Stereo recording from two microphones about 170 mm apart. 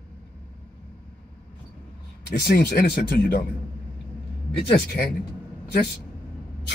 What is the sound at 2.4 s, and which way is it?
Speech, 70° left (ahead or behind).